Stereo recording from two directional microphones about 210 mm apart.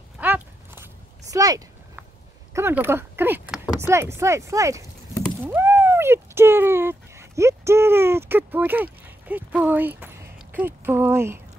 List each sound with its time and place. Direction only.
0.2 s biting: 10° right (ahead or behind)
1.3 s speech: 15° right (ahead or behind)